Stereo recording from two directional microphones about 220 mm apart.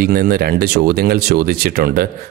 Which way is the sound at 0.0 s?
45° right (ahead or behind).